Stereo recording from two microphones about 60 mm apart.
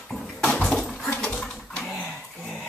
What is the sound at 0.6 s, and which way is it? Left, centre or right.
Dishes, centre.